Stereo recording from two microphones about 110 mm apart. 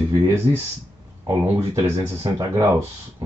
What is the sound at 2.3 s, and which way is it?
Speech, 25° right (ahead or behind).